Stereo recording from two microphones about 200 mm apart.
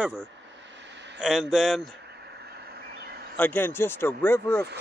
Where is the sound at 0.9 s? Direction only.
60° right (ahead or behind).